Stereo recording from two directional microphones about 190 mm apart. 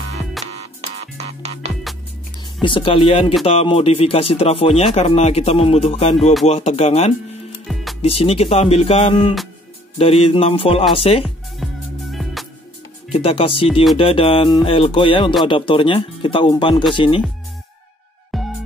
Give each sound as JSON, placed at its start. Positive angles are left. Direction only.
{"t": 0.4, "sound": "music", "side_deg": 0}
{"t": 0.7, "sound": "music", "side_deg": -35}
{"t": 2.6, "sound": "music", "side_deg": 25}
{"t": 3.4, "sound": "speech", "side_deg": 30}
{"t": 7.6, "sound": "music", "side_deg": 0}
{"t": 8.0, "sound": "speech", "side_deg": 30}
{"t": 9.9, "sound": "music", "side_deg": 30}
{"t": 11.2, "sound": "music", "side_deg": 0}
{"t": 13.1, "sound": "music", "side_deg": 30}
{"t": 18.3, "sound": "music", "side_deg": 0}